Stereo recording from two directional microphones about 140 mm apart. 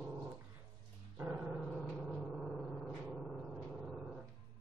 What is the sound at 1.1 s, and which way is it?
Gong, 10° right (ahead or behind).